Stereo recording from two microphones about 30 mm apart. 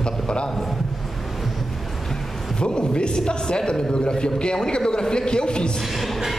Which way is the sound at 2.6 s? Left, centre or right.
Left.